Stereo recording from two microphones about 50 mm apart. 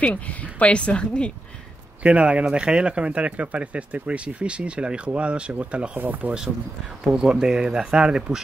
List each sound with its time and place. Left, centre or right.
0.0 s speech: left
2.0 s speech: right
5.9 s speech: right
7.2 s speech: centre